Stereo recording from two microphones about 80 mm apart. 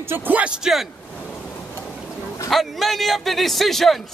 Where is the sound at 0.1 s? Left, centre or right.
Right.